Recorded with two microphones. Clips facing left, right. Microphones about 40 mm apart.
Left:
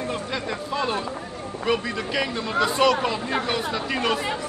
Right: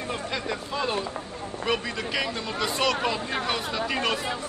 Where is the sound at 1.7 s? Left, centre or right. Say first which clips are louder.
Left 3 dB; centre.